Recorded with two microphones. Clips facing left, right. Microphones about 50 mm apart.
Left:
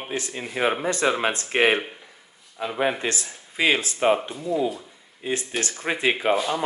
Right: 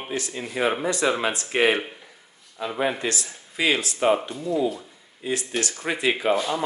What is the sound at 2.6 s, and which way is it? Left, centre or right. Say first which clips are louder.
Speech: left 1 dB; centre.